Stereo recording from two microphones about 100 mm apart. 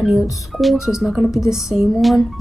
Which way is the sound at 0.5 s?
Centre (ahead or behind).